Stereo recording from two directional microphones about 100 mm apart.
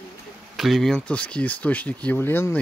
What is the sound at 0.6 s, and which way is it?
Speech, centre (ahead or behind).